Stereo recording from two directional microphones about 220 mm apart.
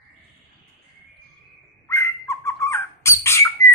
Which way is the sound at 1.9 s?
10° left (ahead or behind).